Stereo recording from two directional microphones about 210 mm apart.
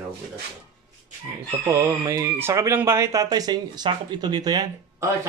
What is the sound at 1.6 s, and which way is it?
Speech, 15° right (ahead or behind).